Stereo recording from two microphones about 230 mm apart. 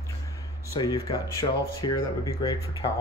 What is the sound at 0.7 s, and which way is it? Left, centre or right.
Speech, centre.